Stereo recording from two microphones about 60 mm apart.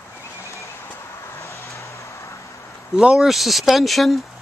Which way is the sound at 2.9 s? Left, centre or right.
Centre.